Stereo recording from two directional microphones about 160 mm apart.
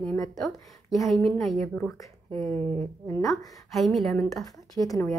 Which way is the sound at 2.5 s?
35° right (ahead or behind).